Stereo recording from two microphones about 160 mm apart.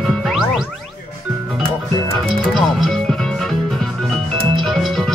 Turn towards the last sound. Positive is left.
turn(degrees=0)  # may be behind; listen again after turning